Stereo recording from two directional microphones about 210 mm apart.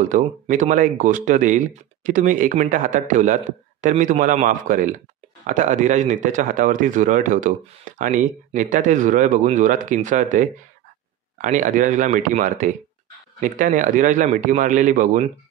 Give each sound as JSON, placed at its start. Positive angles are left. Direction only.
{"t": 0.1, "sound": "a man's voice", "side_deg": -40}